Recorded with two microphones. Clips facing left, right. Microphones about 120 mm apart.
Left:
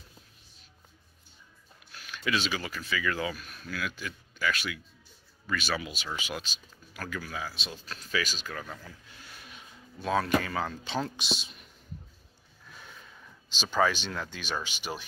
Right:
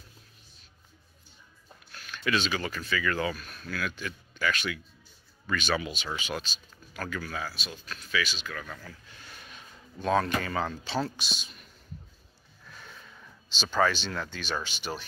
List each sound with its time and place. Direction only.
1.9 s speech: 10° left (ahead or behind)
7.5 s speech: 30° left (ahead or behind)
8.7 s speech: 10° left (ahead or behind)
11.1 s speech: 25° left (ahead or behind)
13.5 s speech: 10° left (ahead or behind)